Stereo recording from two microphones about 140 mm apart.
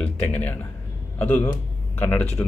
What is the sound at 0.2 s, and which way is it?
A man's voice, 10° left (ahead or behind).